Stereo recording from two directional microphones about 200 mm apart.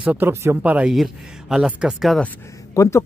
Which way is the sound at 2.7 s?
15° left (ahead or behind).